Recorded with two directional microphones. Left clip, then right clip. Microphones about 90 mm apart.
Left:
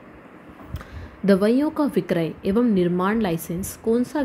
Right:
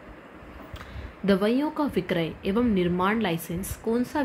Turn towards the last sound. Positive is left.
turn(degrees=35)  # may be behind; listen again after turning